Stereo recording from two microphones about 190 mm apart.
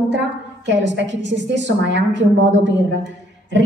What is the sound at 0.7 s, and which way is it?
A woman's voice, 70° right (ahead or behind).